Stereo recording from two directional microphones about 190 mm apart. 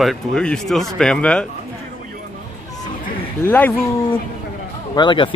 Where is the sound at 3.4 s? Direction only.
10° left (ahead or behind).